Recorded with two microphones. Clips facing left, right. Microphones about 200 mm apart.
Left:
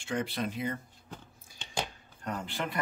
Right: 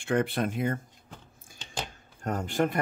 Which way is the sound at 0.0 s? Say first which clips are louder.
Right 6 dB; 55° right (ahead or behind).